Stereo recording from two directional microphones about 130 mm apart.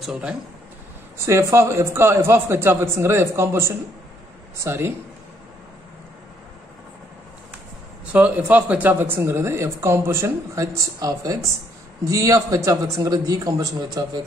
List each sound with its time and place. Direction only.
0.0 s speech: 5° right (ahead or behind)
1.1 s speech: 25° right (ahead or behind)
8.1 s speech: 10° right (ahead or behind); by 14.2 s 30° right (ahead or behind)